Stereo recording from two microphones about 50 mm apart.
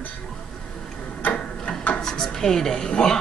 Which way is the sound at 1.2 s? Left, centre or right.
Left.